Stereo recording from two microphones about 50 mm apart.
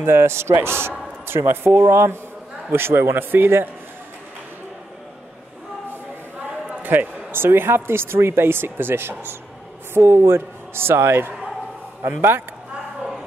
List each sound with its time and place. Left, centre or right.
0.0 s a man's voice: right
2.7 s speech: right
6.7 s speech: right
9.9 s a man's voice: right